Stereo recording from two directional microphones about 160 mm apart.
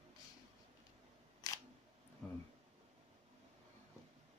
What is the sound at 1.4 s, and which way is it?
Single-lens reflex camera, 25° left (ahead or behind).